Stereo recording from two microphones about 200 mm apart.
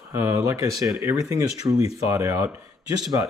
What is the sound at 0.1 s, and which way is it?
Speech, 15° right (ahead or behind).